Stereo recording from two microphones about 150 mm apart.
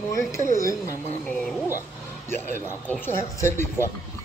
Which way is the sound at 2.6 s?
15° left (ahead or behind).